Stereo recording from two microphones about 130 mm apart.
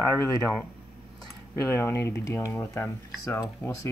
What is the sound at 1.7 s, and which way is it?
Speech, 20° left (ahead or behind).